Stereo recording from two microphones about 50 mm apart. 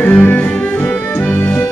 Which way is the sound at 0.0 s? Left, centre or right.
Left.